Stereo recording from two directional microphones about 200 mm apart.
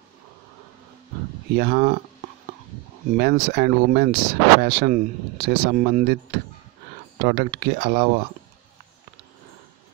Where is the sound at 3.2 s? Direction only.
50° right (ahead or behind).